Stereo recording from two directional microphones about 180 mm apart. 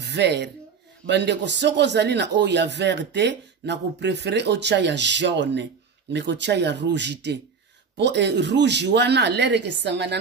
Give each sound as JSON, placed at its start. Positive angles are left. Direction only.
{"t": 0.0, "sound": "a man's voice", "side_deg": -70}